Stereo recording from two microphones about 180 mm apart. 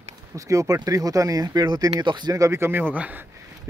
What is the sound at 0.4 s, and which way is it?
Speech, 20° right (ahead or behind).